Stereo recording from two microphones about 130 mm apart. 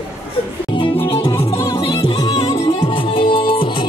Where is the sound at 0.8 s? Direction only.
40° left (ahead or behind).